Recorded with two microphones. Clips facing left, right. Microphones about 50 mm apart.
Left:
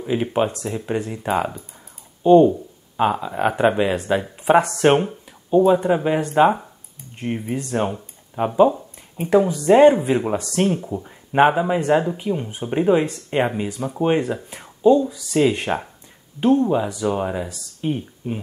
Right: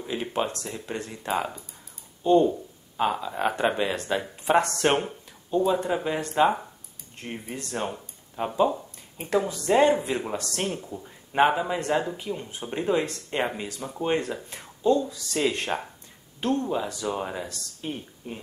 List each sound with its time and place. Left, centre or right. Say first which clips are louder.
0.0 s speech: left 8 dB; centre